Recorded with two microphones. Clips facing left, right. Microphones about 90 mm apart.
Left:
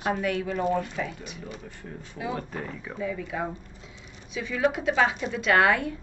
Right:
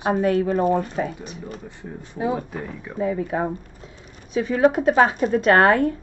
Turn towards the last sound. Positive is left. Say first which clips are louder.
# right 6 dB
turn(degrees=-45)  # may be behind; listen again after turning